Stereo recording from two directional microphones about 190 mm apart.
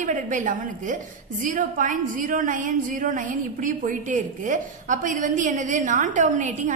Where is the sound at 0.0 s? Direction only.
40° right (ahead or behind).